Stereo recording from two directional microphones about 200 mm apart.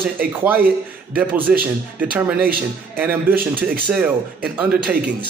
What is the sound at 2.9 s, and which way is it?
Speech, 10° right (ahead or behind).